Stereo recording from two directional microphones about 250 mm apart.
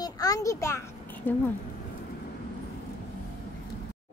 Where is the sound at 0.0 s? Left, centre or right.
Centre.